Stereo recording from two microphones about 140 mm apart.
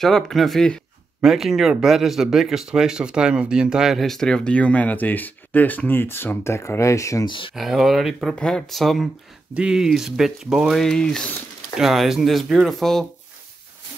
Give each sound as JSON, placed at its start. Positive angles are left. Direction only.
{"t": 0.0, "sound": "speech", "side_deg": 0}
{"t": 7.2, "sound": "speech", "side_deg": 40}
{"t": 7.5, "sound": "speech", "side_deg": 0}